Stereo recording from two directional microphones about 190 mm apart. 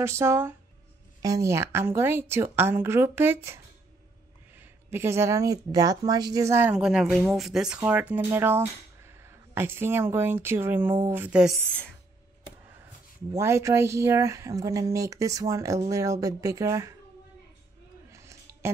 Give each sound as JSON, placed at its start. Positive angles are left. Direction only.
{"t": 0.0, "sound": "speech", "side_deg": -15}
{"t": 13.3, "sound": "speech", "side_deg": -15}
{"t": 18.1, "sound": "a sound", "side_deg": -15}